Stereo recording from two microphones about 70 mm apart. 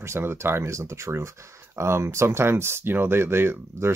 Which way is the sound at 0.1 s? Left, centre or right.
Right.